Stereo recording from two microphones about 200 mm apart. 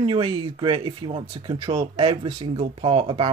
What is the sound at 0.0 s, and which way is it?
Speech, 25° right (ahead or behind).